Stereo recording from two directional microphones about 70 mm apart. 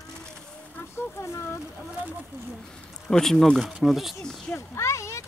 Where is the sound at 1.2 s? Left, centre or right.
Left.